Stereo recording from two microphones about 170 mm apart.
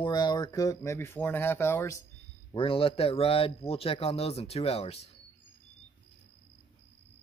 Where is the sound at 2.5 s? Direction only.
30° left (ahead or behind).